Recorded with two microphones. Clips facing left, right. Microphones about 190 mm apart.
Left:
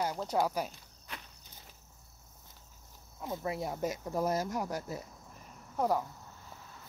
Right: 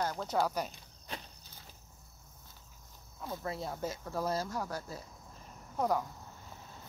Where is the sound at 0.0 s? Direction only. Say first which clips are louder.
Left 1 dB; 5° left (ahead or behind).